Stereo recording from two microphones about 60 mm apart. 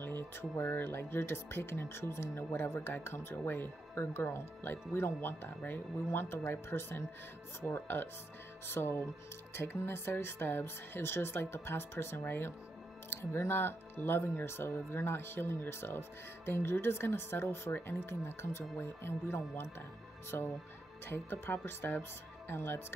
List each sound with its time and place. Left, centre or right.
0.0 s speech: left